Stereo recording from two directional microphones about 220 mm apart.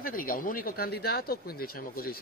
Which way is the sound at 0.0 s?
40° left (ahead or behind).